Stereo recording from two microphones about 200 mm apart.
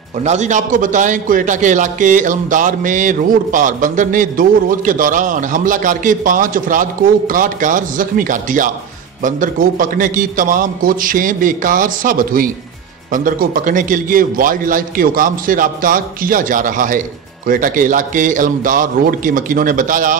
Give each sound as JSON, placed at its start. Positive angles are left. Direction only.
{"t": 0.2, "sound": "a man's voice", "side_deg": -35}